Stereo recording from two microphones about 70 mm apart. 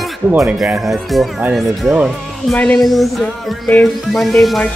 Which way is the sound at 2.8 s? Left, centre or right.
Centre.